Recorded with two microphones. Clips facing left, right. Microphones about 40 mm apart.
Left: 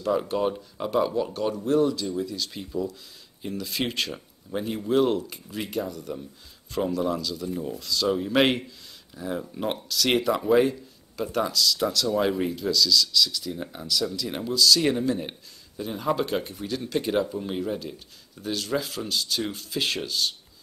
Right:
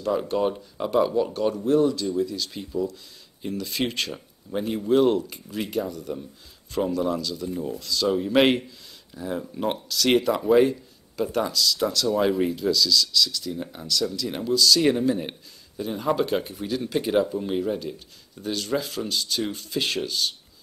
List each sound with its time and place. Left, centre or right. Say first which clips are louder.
0.0 s speech: right 1 dB; centre